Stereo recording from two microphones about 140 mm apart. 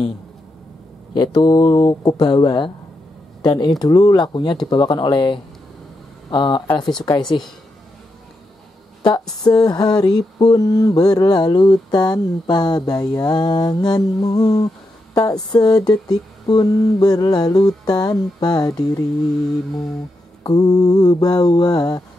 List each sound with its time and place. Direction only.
1.1 s mantra: 30° left (ahead or behind)
3.4 s speech: 30° left (ahead or behind)
9.4 s mantra: 25° left (ahead or behind)
20.4 s mantra: 25° left (ahead or behind)